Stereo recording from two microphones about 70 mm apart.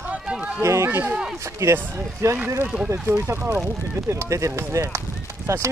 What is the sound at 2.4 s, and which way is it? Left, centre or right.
Speech, right.